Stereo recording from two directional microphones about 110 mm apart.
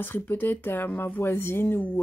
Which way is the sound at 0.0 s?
20° left (ahead or behind).